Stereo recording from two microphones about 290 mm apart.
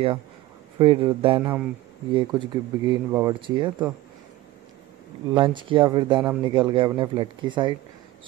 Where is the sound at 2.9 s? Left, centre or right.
Centre.